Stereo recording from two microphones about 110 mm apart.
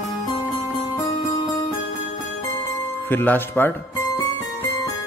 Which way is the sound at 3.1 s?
20° left (ahead or behind).